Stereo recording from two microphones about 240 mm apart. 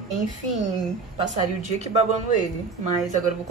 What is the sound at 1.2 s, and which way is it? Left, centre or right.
Speech, right.